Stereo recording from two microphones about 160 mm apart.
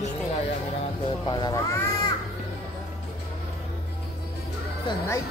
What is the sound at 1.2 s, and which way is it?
Speech, 30° left (ahead or behind).